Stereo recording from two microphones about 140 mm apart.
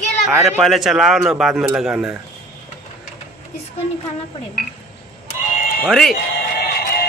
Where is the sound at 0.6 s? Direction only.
Centre (ahead or behind).